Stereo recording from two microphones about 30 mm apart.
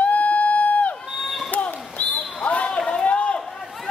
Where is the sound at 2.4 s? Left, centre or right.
Left.